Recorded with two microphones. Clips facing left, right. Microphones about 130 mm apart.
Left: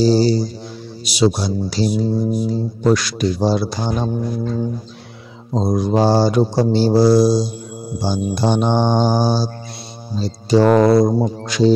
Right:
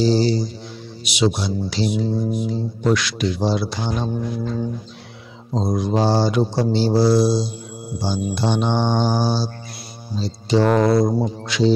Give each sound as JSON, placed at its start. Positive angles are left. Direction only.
{"t": 0.0, "sound": "speech", "side_deg": 40}
{"t": 5.5, "sound": "speech", "side_deg": 40}
{"t": 8.0, "sound": "mantra", "side_deg": 45}
{"t": 10.1, "sound": "speech", "side_deg": 40}